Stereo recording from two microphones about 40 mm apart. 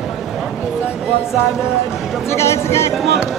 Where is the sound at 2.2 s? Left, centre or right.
Left.